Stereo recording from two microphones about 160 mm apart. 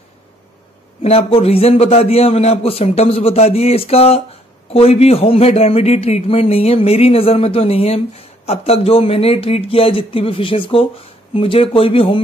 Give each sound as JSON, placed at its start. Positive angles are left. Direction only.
{"t": 1.0, "sound": "speech", "side_deg": 40}